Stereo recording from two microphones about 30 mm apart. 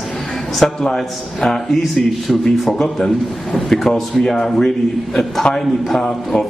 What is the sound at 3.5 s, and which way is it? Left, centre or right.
A man's voice, centre.